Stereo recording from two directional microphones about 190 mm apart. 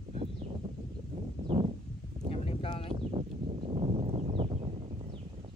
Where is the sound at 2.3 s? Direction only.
30° left (ahead or behind).